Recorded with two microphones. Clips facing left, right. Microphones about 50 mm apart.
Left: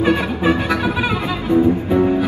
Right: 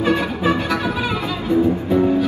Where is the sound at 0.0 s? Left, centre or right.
Centre.